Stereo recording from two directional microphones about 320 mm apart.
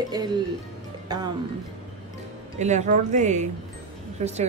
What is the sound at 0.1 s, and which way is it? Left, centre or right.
Speech, centre.